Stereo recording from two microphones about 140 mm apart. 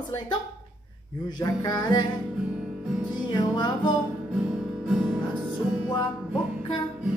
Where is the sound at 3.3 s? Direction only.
30° left (ahead or behind).